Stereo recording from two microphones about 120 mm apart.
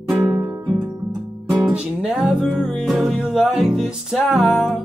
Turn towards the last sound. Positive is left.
turn(degrees=0)  # may be behind; listen again after turning